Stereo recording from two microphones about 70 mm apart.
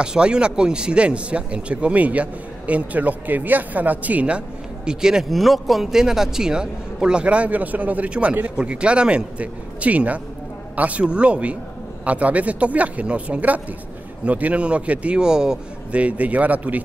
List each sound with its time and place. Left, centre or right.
0.0 s speech: centre
4.8 s speech: centre